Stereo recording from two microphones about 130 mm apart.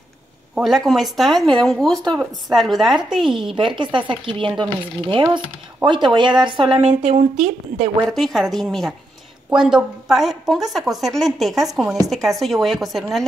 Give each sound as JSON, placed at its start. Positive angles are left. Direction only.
{"t": 0.6, "sound": "a woman's voice", "side_deg": 0}
{"t": 3.5, "sound": "speech", "side_deg": -40}
{"t": 6.8, "sound": "a woman's voice", "side_deg": -60}
{"t": 8.1, "sound": "a woman's voice", "side_deg": 0}